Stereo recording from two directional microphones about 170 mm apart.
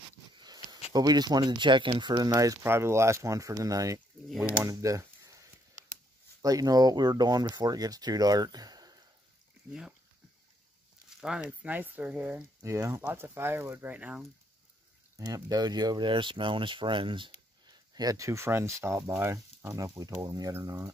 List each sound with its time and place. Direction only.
0.4 s a sound: 25° right (ahead or behind)
0.9 s speech: 25° right (ahead or behind)
6.4 s speech: 20° right (ahead or behind)
9.7 s speech: 5° right (ahead or behind)
11.1 s speech: 5° right (ahead or behind)
15.1 s speech: 20° right (ahead or behind)